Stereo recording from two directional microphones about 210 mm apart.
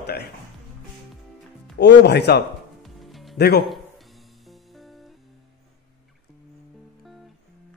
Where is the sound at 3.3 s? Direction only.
50° left (ahead or behind).